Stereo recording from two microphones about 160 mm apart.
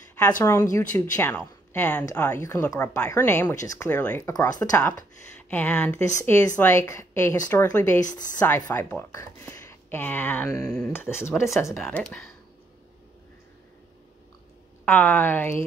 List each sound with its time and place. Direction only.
0.1 s speech: 15° left (ahead or behind)
4.3 s speech: 25° left (ahead or behind)
11.7 s speech: 5° left (ahead or behind)
14.9 s speech: 10° left (ahead or behind)